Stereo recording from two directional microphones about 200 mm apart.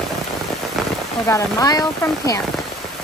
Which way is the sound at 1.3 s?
20° left (ahead or behind).